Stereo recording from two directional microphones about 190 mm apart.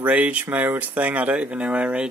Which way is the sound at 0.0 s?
10° right (ahead or behind).